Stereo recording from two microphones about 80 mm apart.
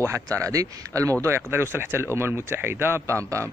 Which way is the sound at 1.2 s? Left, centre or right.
Right.